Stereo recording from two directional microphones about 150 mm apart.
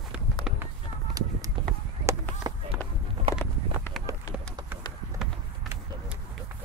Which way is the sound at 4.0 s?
Centre (ahead or behind).